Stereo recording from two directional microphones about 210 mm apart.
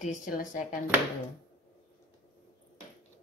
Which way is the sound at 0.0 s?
35° left (ahead or behind).